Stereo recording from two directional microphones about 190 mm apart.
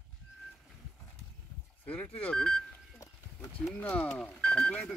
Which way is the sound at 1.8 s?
5° left (ahead or behind).